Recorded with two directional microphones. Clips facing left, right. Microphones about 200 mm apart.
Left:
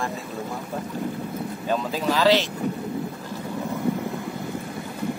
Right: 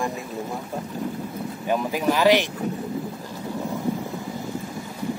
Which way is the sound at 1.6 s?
15° right (ahead or behind).